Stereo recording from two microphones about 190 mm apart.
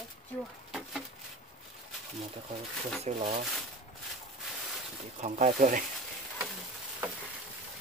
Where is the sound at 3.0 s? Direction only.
35° right (ahead or behind).